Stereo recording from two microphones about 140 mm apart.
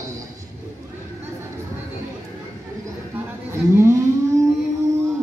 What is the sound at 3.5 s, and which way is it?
Speech, 20° right (ahead or behind).